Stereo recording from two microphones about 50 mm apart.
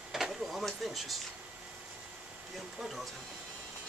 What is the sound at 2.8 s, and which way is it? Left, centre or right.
Speech, centre.